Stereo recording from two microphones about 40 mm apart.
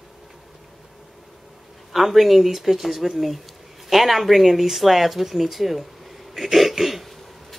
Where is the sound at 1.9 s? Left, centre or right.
Centre.